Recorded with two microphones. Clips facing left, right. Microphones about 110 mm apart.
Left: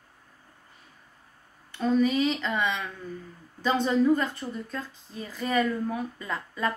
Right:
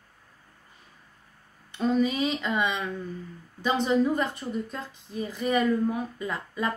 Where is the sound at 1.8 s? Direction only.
15° right (ahead or behind).